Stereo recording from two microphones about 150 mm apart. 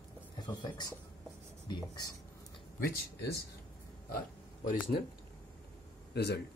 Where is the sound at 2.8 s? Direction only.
90° left.